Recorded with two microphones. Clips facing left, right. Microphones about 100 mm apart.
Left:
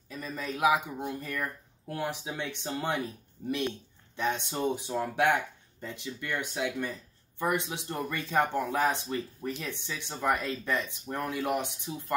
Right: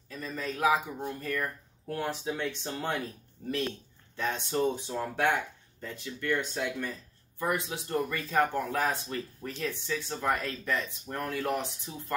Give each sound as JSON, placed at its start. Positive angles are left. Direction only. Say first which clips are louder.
{"t": 0.1, "sound": "speech", "louder": "even", "side_deg": 15}
{"t": 4.2, "sound": "speech", "louder": "right 1 dB", "side_deg": 20}